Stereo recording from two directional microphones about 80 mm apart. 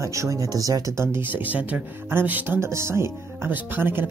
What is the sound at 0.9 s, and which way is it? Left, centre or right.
Speech, right.